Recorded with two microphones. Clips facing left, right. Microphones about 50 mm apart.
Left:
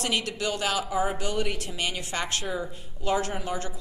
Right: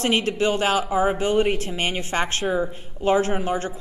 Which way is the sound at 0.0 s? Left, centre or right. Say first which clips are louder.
Right 7 dB; right.